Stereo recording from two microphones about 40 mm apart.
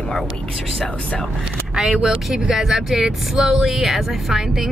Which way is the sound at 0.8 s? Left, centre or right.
Left.